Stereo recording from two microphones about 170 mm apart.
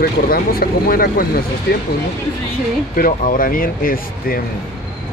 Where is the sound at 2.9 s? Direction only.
55° left (ahead or behind).